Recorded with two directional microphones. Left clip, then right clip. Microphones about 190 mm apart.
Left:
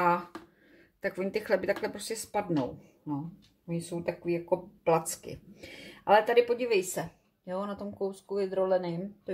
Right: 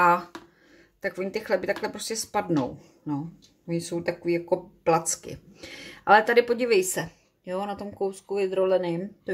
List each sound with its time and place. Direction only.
0.0 s a sound: 15° right (ahead or behind)
1.0 s speech: centre (ahead or behind)
3.6 s speech: 25° right (ahead or behind)